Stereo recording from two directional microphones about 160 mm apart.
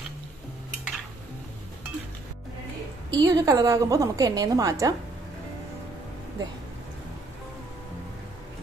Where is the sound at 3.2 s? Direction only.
25° right (ahead or behind).